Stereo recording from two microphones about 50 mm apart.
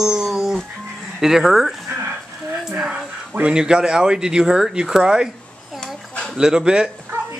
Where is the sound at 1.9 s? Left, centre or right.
Right.